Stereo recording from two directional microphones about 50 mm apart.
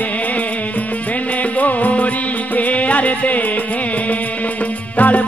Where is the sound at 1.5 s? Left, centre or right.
Left.